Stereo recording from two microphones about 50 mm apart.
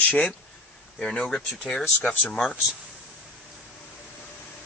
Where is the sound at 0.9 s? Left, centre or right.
Centre.